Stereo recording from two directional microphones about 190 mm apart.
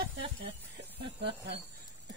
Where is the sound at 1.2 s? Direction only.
60° right (ahead or behind).